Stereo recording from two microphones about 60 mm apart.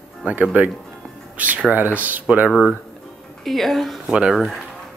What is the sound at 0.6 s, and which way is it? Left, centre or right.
Speech, right.